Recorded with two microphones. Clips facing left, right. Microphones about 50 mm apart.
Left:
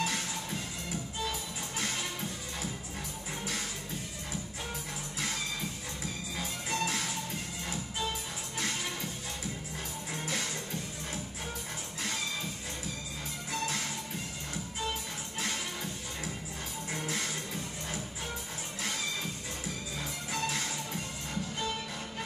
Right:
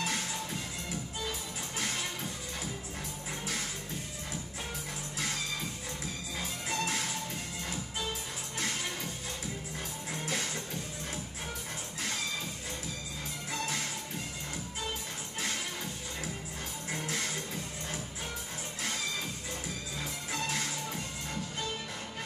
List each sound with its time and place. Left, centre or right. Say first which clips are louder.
0.0 s music: left 1 dB; centre
6.3 s music: even; centre
10.1 s music: even; centre
13.5 s music: left 1 dB; centre
16.9 s music: even; centre
20.0 s music: left 1 dB; centre